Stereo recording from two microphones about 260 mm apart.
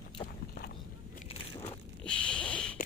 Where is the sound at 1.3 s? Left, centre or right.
Left.